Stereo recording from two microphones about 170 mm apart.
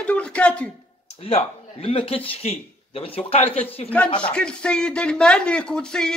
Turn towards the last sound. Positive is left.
turn(degrees=5)  # may be behind; listen again after turning